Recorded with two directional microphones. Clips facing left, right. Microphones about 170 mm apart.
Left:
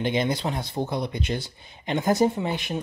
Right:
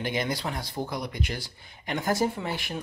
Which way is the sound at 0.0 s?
20° left (ahead or behind).